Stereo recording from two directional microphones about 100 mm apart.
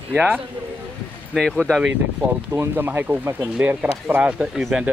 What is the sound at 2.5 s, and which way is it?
Speech, 20° right (ahead or behind).